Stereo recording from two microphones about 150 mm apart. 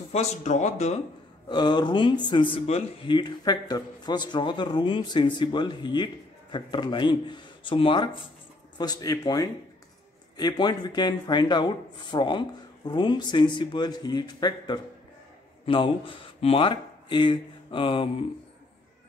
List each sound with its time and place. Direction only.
0.1 s speech: 45° left (ahead or behind)
1.5 s speech: 30° left (ahead or behind)
3.1 s speech: 30° left (ahead or behind)